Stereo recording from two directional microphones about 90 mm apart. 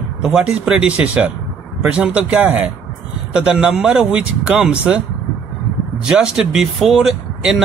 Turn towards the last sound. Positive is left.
turn(degrees=-5)  # may be behind; listen again after turning